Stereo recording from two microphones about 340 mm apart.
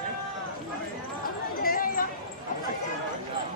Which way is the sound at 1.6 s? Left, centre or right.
Left.